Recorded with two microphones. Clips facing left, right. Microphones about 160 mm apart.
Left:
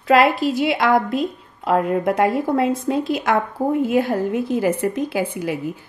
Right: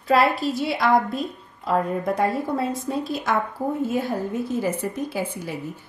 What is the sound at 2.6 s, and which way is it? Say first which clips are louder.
A woman's voice: left 6 dB; 90° left.